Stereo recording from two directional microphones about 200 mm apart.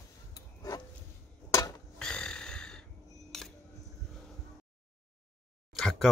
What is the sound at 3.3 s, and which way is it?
Scissors, centre (ahead or behind).